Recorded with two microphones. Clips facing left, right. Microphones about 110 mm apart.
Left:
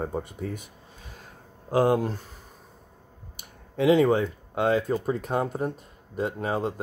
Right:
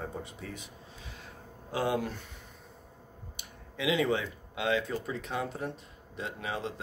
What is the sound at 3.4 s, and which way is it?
Speech, 45° left (ahead or behind).